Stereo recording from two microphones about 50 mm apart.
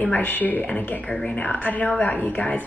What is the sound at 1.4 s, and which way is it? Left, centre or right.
Speech, left.